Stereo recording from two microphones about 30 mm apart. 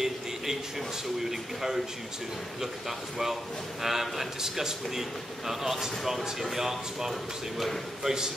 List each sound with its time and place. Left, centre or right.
0.0 s a sound: centre
1.3 s speech: centre
3.8 s speech: centre
8.0 s a man's voice: right